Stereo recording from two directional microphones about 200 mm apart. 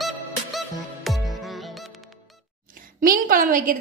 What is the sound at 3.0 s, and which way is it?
Speech, 45° right (ahead or behind).